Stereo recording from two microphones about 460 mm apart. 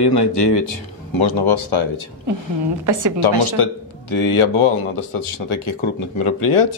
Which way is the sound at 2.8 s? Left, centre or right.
Right.